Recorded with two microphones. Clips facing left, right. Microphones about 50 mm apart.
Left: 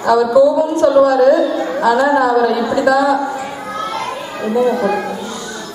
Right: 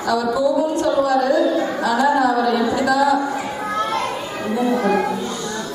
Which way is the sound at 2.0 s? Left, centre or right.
Left.